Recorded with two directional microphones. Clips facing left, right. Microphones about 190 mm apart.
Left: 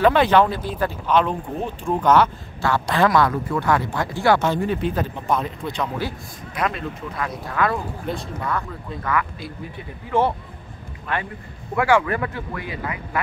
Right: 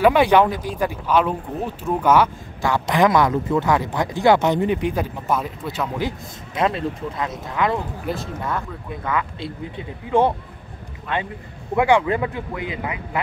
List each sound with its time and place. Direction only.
0.0 s speech: 10° right (ahead or behind)
5.2 s speech: 5° right (ahead or behind)
5.9 s speech: 20° right (ahead or behind)
8.1 s speech: 5° right (ahead or behind)
8.5 s speech: 20° right (ahead or behind)
11.7 s speech: 20° right (ahead or behind)